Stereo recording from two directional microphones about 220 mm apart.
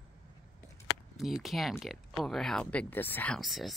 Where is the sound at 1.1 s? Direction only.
Centre (ahead or behind).